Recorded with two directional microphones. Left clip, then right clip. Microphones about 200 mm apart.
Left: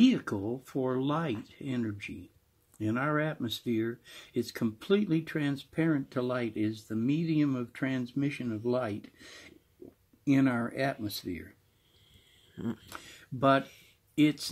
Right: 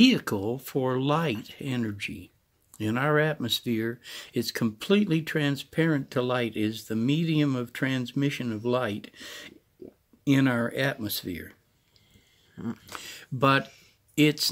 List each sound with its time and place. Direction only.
0.0 s speech: 55° right (ahead or behind)
12.5 s speech: 5° left (ahead or behind)
13.0 s speech: 55° right (ahead or behind)